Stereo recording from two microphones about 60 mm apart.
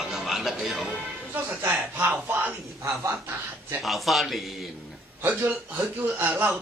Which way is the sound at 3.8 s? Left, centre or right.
Centre.